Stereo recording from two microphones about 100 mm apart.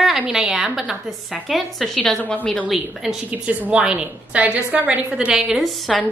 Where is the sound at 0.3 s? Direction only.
5° right (ahead or behind).